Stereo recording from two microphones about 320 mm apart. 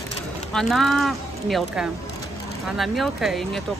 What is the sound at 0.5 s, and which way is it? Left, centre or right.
Speech, centre.